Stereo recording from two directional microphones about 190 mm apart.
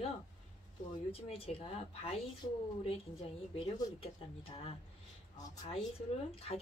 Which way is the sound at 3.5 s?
30° left (ahead or behind).